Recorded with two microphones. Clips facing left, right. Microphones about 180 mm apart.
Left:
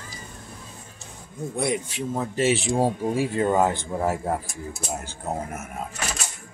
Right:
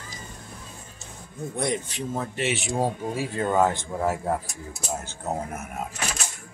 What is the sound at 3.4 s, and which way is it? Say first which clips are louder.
Speech: right 1 dB; 20° left (ahead or behind).